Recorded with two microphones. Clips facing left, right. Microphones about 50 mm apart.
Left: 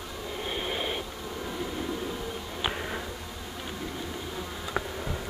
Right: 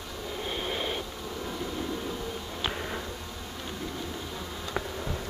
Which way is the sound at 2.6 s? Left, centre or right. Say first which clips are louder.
Left 2 dB; centre.